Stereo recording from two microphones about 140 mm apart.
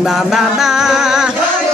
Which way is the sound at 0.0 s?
5° right (ahead or behind).